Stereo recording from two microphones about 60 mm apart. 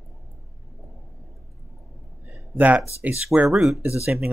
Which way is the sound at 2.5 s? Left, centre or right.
Right.